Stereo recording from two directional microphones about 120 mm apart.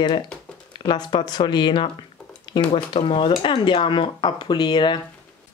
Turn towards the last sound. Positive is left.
turn(degrees=40)  # may be behind; listen again after turning